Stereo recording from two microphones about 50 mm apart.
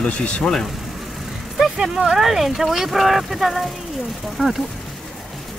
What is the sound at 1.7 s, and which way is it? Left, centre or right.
Speech, centre.